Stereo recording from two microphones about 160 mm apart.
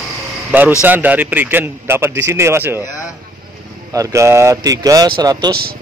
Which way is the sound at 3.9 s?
15° right (ahead or behind).